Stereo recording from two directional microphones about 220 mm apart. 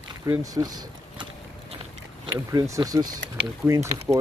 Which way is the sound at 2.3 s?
15° right (ahead or behind).